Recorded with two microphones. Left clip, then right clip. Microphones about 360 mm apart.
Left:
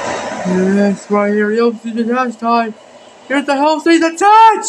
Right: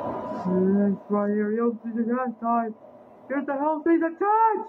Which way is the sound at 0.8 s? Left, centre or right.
Right.